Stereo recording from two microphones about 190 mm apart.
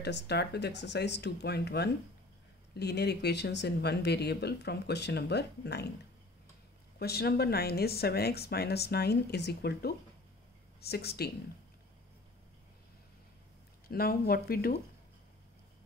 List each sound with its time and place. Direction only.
0.0 s speech: 60° left (ahead or behind)
7.0 s speech: 55° left (ahead or behind)
13.8 s speech: 50° left (ahead or behind)